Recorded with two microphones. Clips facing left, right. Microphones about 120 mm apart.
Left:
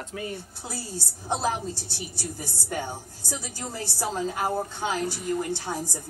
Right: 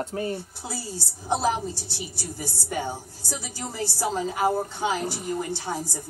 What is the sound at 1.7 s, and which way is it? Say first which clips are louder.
A woman's voice: even; 15° left (ahead or behind).